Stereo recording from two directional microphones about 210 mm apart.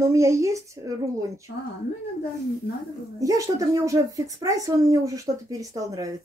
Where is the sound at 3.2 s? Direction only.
15° right (ahead or behind).